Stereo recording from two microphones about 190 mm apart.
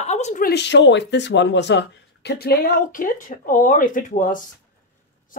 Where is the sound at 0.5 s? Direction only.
65° left (ahead or behind).